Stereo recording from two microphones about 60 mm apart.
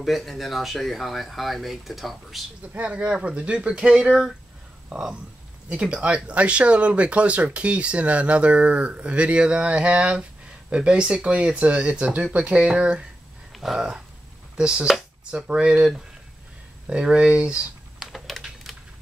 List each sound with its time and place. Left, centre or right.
0.0 s speech: centre
2.7 s speech: right
13.5 s speech: centre
17.9 s typing: centre
18.4 s a sound: centre